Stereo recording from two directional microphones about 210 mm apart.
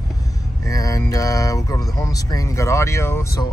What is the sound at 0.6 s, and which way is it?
Speech, 15° left (ahead or behind).